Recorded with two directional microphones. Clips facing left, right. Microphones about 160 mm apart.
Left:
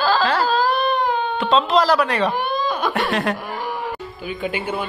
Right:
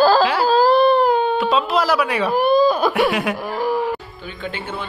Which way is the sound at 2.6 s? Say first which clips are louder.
Right 5 dB; 10° right (ahead or behind).